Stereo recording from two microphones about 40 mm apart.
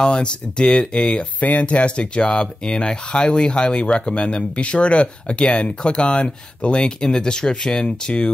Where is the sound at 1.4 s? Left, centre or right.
Left.